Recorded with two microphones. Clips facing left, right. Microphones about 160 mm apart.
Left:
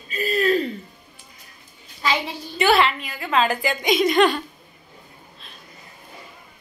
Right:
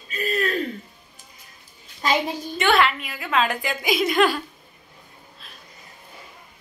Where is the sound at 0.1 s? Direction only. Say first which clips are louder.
Left 4 dB; centre (ahead or behind).